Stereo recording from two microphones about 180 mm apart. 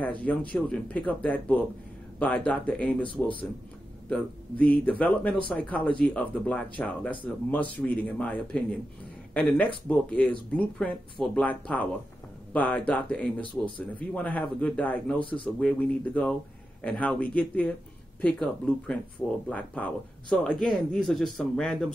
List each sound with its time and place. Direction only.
0.0 s speech: 10° left (ahead or behind)
4.1 s speech: 10° left (ahead or behind)
15.1 s speech: 30° left (ahead or behind)
15.6 s speech: 10° left (ahead or behind)